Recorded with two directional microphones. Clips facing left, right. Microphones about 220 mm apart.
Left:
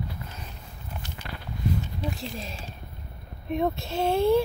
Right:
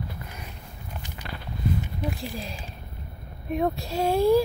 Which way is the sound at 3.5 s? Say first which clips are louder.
Right 1 dB; centre (ahead or behind).